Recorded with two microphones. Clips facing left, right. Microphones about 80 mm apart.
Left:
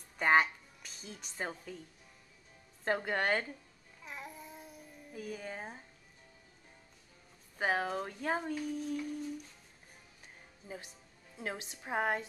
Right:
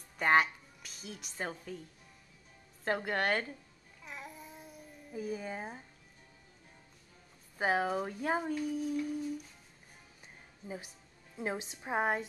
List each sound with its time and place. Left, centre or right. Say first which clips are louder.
0.2 s a woman's voice: even; centre
2.8 s speech: even; centre
4.0 s child singing: even; centre
5.1 s speech: right 4 dB; centre
7.5 s speech: right 2 dB; centre
11.3 s a woman's voice: right 4 dB; right